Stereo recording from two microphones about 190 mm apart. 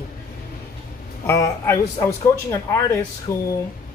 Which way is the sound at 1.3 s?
15° left (ahead or behind).